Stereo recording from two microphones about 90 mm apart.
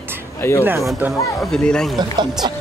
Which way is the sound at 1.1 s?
5° left (ahead or behind).